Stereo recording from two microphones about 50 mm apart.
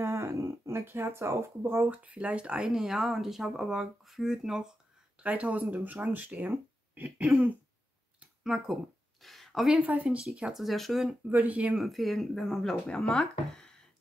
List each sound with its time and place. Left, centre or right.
0.0 s a sound: right
1.9 s speech: right
2.7 s a woman's voice: centre
5.2 s speech: right
9.2 s a sound: centre
9.8 s speech: right
10.5 s speech: centre
11.2 s speech: right
11.6 s a woman's voice: centre
11.9 s speech: centre